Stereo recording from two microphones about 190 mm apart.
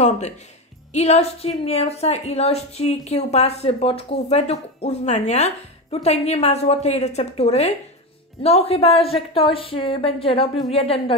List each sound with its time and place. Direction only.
0.9 s a woman's voice: 35° left (ahead or behind)